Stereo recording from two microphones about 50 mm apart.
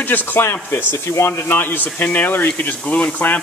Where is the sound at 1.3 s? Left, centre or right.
Left.